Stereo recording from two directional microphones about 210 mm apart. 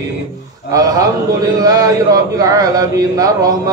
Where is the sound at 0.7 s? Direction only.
15° right (ahead or behind).